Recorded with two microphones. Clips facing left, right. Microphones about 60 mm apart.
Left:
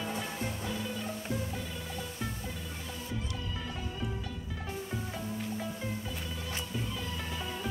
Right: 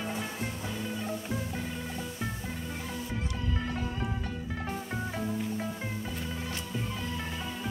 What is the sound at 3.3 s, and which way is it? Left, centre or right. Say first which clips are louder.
Music: right 5 dB; right.